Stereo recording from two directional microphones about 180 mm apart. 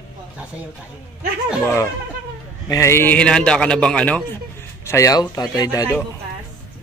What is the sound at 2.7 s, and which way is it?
A man's voice, 15° left (ahead or behind).